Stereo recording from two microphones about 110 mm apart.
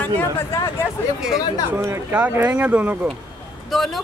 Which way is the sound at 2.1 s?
15° right (ahead or behind).